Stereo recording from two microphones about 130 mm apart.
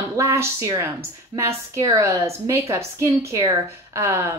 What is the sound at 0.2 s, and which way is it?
A woman's voice, 20° right (ahead or behind).